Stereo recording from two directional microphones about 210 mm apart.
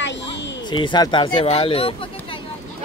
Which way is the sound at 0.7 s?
20° left (ahead or behind).